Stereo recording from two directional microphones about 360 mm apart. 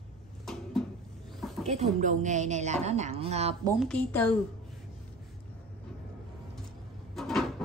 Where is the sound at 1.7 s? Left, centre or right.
Centre.